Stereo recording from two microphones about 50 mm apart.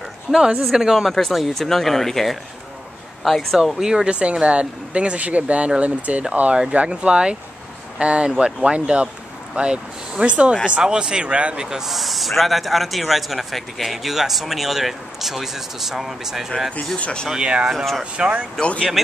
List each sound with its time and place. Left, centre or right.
0.3 s speech: centre
1.0 s speech: centre
3.7 s speech: centre
11.9 s speech: centre
17.0 s speech: centre
17.3 s speech: centre
18.6 s speech: left